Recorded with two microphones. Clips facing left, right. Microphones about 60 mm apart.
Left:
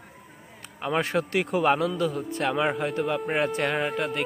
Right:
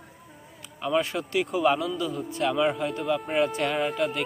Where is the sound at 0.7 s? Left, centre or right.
Left.